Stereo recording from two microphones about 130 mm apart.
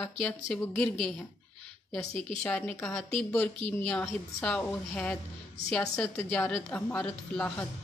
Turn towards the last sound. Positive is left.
turn(degrees=10)  # may be behind; listen again after turning